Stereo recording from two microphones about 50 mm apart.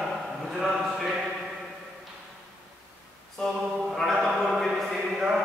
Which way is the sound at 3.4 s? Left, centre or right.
Centre.